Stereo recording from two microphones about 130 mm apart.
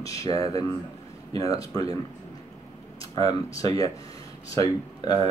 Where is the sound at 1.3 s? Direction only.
30° left (ahead or behind).